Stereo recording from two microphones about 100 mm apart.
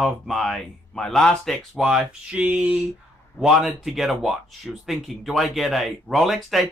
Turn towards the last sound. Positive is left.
turn(degrees=0)  # may be behind; listen again after turning